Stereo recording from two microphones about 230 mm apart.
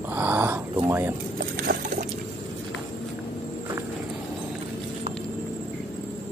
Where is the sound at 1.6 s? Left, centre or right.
Right.